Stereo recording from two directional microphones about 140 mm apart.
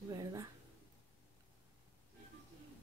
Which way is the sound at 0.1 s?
25° right (ahead or behind).